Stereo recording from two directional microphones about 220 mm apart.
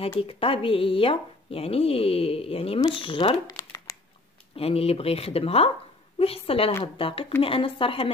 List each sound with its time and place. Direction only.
0.2 s speech: 25° left (ahead or behind)
4.6 s speech: 25° left (ahead or behind)